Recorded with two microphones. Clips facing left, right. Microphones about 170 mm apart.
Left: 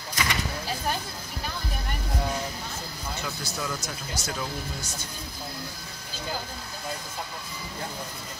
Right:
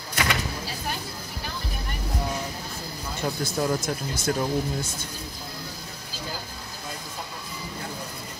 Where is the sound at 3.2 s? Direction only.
55° right (ahead or behind).